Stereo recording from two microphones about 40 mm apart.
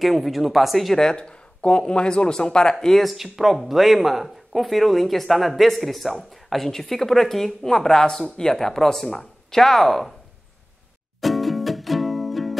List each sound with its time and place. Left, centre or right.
0.0 s speech: centre
0.9 s speech: left
3.1 s speech: centre
11.1 s music: centre